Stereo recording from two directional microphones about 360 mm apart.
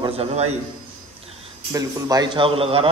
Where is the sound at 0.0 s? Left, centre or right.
Centre.